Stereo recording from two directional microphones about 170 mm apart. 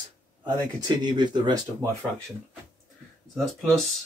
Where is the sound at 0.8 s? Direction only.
25° right (ahead or behind).